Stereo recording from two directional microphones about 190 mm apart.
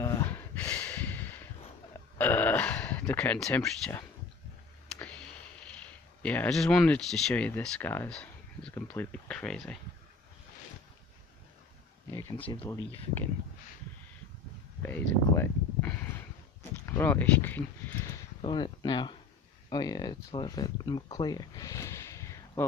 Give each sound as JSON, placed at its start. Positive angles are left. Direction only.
{"t": 0.0, "sound": "a sound", "side_deg": 15}
{"t": 6.2, "sound": "speech", "side_deg": 10}
{"t": 12.1, "sound": "speech", "side_deg": 15}
{"t": 14.8, "sound": "a sound", "side_deg": 10}
{"t": 16.8, "sound": "speech", "side_deg": 15}
{"t": 18.4, "sound": "speech", "side_deg": 25}